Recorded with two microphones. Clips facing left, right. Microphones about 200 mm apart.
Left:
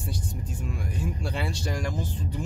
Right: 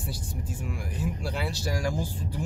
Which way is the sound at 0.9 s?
5° right (ahead or behind).